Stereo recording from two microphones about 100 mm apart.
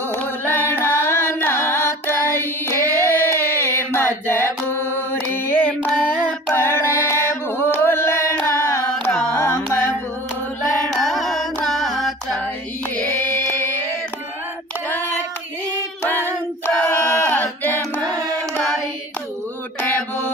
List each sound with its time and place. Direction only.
0.1 s carnatic music: 25° left (ahead or behind)
6.5 s music: 25° left (ahead or behind)
9.3 s carnatic music: 25° left (ahead or behind)
10.9 s music: centre (ahead or behind)
12.9 s carnatic music: 15° left (ahead or behind)
14.9 s child singing: 20° left (ahead or behind)
16.0 s singing: 20° left (ahead or behind)